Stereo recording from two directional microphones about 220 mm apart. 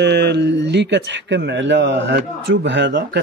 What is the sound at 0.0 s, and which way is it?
Speech, 50° right (ahead or behind).